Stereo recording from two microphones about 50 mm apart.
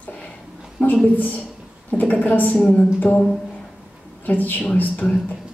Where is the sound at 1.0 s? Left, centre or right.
Left.